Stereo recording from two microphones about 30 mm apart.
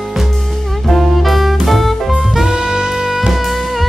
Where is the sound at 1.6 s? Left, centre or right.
Centre.